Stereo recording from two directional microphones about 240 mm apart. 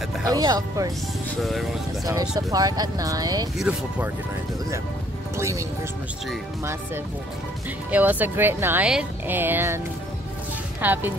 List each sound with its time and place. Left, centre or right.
0.3 s speech: centre
1.4 s speech: centre
2.0 s speech: centre
3.5 s speech: centre
5.4 s speech: centre
7.9 s speech: centre
10.8 s speech: centre